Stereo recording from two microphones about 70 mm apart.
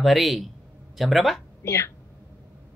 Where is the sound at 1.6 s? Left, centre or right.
Left.